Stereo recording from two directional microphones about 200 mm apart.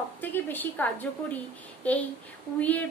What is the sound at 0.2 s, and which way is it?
A woman's voice, 10° left (ahead or behind).